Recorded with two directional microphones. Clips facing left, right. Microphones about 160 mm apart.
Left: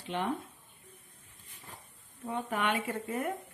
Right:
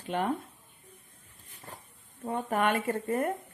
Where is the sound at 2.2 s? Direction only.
45° right (ahead or behind).